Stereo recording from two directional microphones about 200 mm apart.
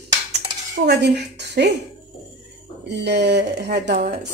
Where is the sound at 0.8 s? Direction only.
60° right (ahead or behind).